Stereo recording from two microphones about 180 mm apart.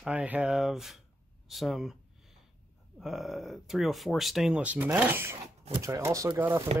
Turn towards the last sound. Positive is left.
turn(degrees=-15)  # may be behind; listen again after turning